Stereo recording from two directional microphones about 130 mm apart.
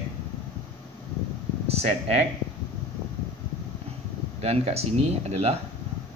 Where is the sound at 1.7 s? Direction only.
55° right (ahead or behind).